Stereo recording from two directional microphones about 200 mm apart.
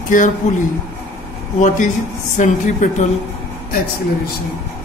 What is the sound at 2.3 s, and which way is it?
Speech, 40° left (ahead or behind).